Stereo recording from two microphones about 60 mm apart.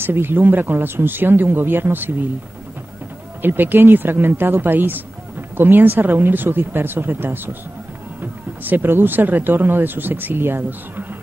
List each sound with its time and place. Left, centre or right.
0.0 s speech: right
3.4 s speech: right